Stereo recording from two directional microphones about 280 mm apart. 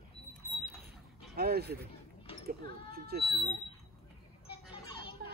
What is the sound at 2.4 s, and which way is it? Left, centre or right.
Speech, right.